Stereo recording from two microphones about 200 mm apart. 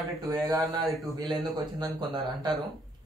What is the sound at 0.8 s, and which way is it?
Speech, centre (ahead or behind).